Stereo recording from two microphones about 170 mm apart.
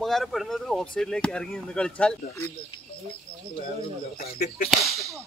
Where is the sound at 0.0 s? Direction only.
Centre (ahead or behind).